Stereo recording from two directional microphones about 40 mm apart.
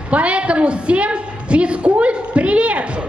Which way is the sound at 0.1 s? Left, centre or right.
Right.